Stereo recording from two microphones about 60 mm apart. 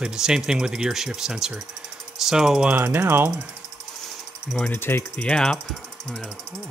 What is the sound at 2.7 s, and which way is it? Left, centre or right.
Speech, right.